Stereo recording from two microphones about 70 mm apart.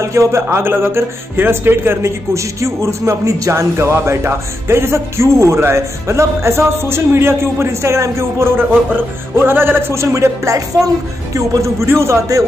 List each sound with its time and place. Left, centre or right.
0.1 s a man's voice: right